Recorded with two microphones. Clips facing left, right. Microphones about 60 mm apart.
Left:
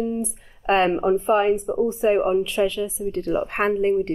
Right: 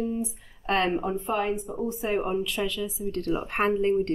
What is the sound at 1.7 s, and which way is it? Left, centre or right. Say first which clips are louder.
Speech: left 8 dB; centre.